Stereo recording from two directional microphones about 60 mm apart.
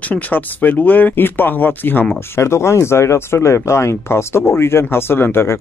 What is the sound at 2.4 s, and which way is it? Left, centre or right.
Speech, left.